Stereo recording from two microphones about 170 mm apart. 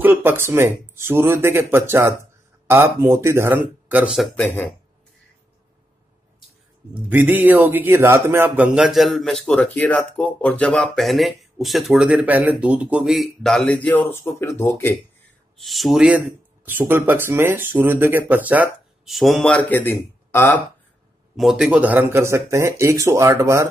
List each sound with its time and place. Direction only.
0.0 s speech: 10° right (ahead or behind)
4.4 s speech: 15° left (ahead or behind)
6.9 s speech: 10° right (ahead or behind); by 15.0 s 15° left (ahead or behind)
15.5 s speech: centre (ahead or behind)
21.4 s speech: centre (ahead or behind)